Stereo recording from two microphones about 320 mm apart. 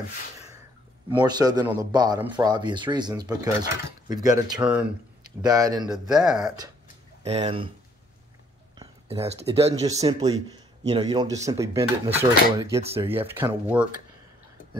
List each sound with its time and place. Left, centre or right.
1.1 s speech: centre
7.2 s speech: centre
8.7 s speech: centre